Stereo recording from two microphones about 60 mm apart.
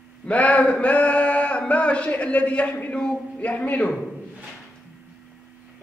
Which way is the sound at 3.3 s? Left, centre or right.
Left.